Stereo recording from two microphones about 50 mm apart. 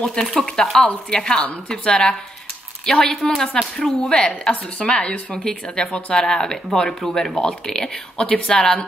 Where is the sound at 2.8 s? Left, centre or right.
Centre.